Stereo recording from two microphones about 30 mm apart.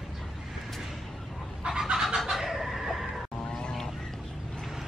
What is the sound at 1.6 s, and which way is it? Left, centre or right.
Chicken, right.